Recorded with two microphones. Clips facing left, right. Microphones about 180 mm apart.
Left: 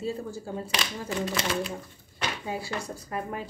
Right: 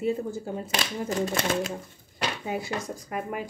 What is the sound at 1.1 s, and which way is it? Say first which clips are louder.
Speech: right 2 dB; 45° right (ahead or behind).